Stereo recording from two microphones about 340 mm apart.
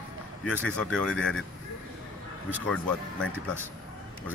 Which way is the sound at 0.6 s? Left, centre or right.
Centre.